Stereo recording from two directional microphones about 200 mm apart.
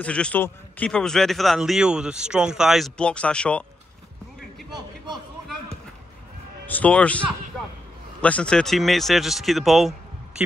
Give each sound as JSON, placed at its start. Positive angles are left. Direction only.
{"t": 0.0, "sound": "a man's voice", "side_deg": 5}
{"t": 4.6, "sound": "a sound", "side_deg": -20}
{"t": 6.7, "sound": "a man's voice", "side_deg": 5}